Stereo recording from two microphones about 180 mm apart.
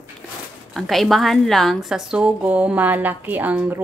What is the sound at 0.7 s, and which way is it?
A woman's voice, centre (ahead or behind).